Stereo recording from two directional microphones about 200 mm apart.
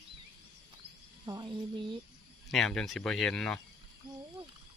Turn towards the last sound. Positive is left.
turn(degrees=5)  # may be behind; listen again after turning